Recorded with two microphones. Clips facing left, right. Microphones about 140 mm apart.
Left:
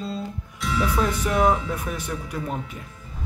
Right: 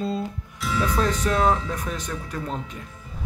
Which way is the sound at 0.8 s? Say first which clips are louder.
Right 1 dB; 10° left (ahead or behind).